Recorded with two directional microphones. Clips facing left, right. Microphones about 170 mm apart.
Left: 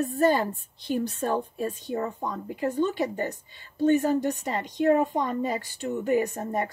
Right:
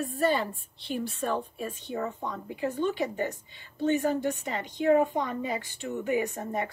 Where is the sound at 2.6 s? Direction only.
45° left (ahead or behind).